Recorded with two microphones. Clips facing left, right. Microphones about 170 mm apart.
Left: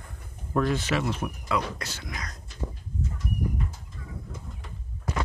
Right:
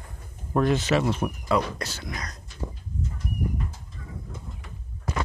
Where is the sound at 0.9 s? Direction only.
40° right (ahead or behind).